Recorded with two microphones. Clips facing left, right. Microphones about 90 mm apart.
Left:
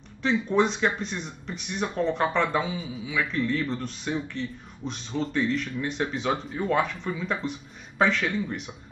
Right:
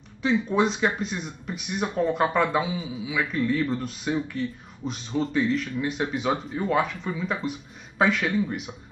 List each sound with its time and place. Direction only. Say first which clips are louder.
0.2 s speech: right 1 dB; 5° right (ahead or behind)